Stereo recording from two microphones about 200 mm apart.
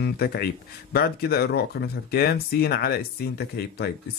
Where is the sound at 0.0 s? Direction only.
50° left (ahead or behind).